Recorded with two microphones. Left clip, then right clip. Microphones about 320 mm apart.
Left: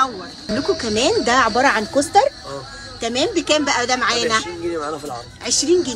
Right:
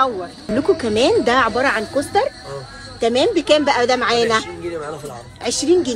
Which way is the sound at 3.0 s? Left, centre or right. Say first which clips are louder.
Right 4 dB; centre.